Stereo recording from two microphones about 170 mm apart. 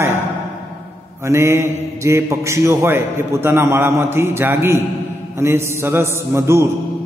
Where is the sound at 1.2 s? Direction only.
15° right (ahead or behind).